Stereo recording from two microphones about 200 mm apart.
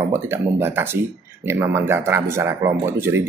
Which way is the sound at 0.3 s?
10° right (ahead or behind).